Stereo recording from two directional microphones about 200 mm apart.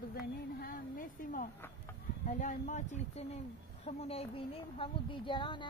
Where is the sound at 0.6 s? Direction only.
45° left (ahead or behind).